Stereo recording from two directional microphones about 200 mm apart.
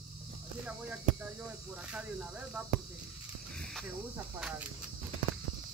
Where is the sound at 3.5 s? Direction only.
5° left (ahead or behind).